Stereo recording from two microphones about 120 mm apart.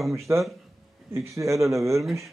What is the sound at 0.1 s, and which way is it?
Speech, 25° right (ahead or behind).